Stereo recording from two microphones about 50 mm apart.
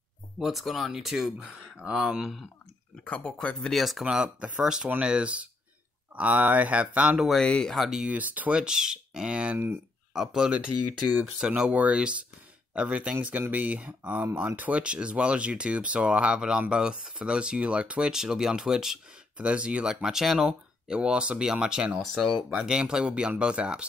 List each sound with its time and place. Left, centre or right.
0.4 s speech: centre
3.7 s speech: centre
4.0 s speech: centre
7.3 s speech: centre
8.1 s speech: right
8.5 s speech: centre
11.7 s speech: right
14.8 s speech: right
19.3 s speech: right; by 20.5 s centre
20.9 s speech: right
22.0 s speech: centre
22.5 s speech: centre